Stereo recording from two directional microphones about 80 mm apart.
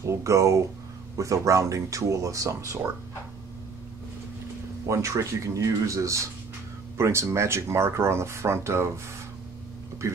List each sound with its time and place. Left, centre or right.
0.0 s speech: right
4.8 s speech: right
10.0 s speech: right